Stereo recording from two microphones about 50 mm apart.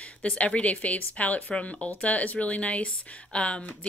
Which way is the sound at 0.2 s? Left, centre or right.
Left.